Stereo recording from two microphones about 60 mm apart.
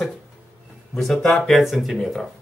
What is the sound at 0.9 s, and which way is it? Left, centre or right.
Speech, centre.